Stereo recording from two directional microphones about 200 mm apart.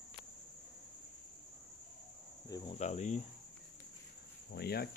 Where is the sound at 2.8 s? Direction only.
35° left (ahead or behind).